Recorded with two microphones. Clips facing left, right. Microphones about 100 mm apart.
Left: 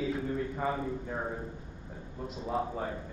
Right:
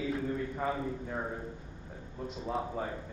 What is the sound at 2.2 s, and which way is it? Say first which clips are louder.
Speech: left 2 dB; centre (ahead or behind).